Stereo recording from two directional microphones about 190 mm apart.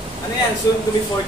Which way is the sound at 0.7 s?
15° left (ahead or behind).